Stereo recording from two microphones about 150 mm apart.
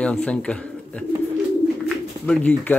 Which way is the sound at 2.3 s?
10° left (ahead or behind).